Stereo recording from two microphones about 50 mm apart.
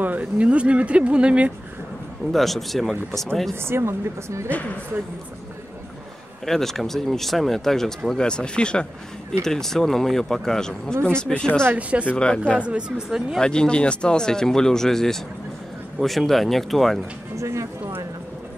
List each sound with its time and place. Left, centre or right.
0.0 s speech: right
2.3 s speech: centre
3.5 s a woman's voice: right
6.4 s speech: centre
9.4 s speech: centre
12.5 s speech: right
13.4 s speech: centre
17.4 s speech: right